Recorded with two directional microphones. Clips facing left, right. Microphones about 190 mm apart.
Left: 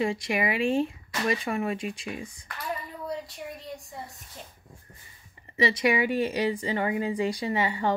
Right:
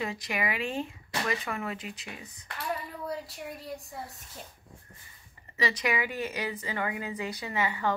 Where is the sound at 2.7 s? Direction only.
Centre (ahead or behind).